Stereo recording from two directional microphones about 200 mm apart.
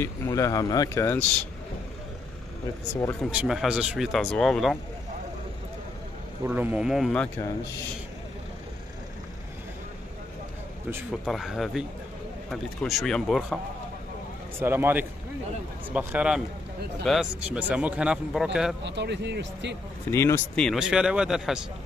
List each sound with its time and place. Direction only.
0.0 s speech: 15° left (ahead or behind)
3.3 s a man's voice: 5° right (ahead or behind)
6.4 s a man's voice: 10° right (ahead or behind)
11.2 s a man's voice: centre (ahead or behind)
14.6 s a man's voice: 10° right (ahead or behind)
18.8 s speech: 60° right (ahead or behind)
20.1 s speech: 15° left (ahead or behind)
20.6 s a man's voice: centre (ahead or behind)